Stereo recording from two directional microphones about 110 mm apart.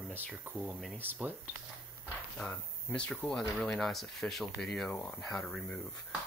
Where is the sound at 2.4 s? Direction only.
10° left (ahead or behind).